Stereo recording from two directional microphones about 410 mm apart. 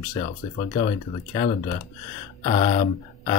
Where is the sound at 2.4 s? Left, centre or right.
Centre.